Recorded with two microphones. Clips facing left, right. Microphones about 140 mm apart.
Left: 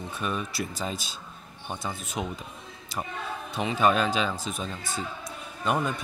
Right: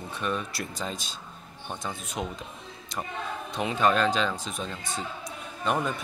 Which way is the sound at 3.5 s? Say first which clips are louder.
Left 1 dB; 5° left (ahead or behind).